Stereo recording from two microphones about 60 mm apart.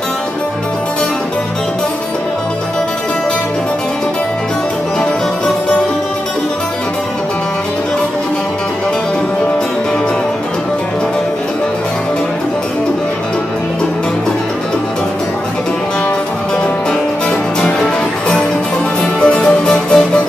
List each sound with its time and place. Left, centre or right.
19.2 s music: centre